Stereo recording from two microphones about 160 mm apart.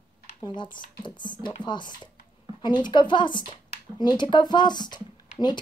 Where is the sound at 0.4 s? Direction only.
30° left (ahead or behind).